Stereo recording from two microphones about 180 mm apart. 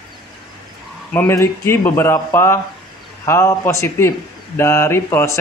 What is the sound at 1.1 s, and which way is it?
Speech, 10° left (ahead or behind).